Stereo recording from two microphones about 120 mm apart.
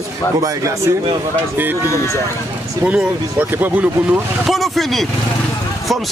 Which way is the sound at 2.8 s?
10° right (ahead or behind).